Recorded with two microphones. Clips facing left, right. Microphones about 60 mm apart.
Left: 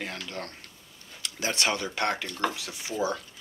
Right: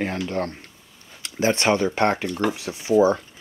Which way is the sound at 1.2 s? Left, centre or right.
Right.